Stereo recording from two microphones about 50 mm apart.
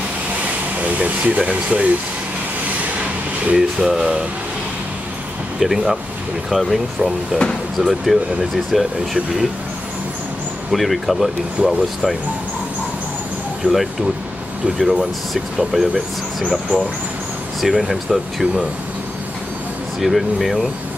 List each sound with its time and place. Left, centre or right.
0.7 s speech: right
3.5 s speech: centre
5.6 s speech: centre
10.7 s speech: centre
13.6 s speech: right
14.8 s speech: centre
20.0 s speech: centre